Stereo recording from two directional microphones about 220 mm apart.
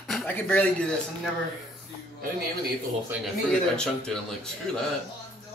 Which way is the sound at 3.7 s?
5° left (ahead or behind).